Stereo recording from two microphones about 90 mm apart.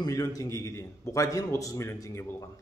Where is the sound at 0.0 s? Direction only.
40° left (ahead or behind).